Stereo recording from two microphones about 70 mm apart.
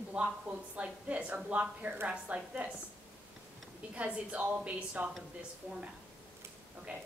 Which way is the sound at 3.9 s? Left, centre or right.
Centre.